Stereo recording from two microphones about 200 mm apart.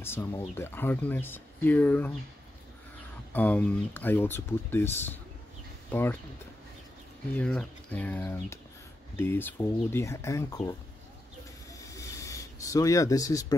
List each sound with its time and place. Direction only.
0.0 s speech: 10° left (ahead or behind)
3.3 s speech: 10° left (ahead or behind)
7.3 s speech: 5° left (ahead or behind)
11.7 s a sound: 15° left (ahead or behind)